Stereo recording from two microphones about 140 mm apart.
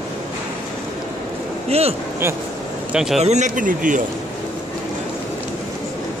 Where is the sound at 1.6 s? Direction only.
45° right (ahead or behind).